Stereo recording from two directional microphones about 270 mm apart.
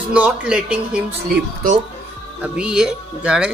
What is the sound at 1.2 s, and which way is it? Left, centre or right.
Speech, right.